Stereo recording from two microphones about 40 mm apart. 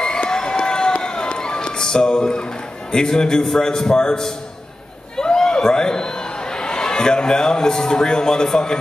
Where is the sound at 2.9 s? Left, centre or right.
Centre.